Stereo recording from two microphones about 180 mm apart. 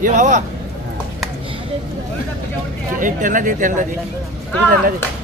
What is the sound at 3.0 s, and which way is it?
Speech, 45° right (ahead or behind).